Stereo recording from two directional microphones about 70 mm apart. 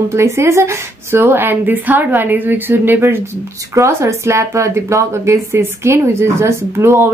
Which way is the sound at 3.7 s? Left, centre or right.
Right.